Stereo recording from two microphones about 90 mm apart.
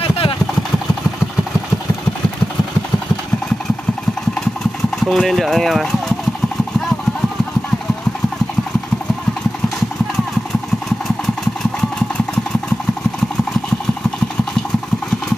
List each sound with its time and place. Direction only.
0.0 s vehicle: 90° left
5.0 s speech: centre (ahead or behind)